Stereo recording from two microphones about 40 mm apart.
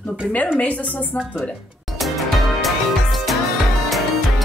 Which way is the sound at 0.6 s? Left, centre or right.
Left.